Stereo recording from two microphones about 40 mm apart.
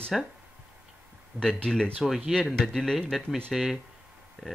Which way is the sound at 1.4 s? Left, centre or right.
Left.